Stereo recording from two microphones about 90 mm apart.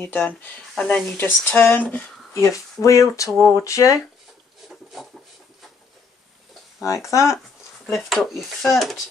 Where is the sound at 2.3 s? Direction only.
35° left (ahead or behind).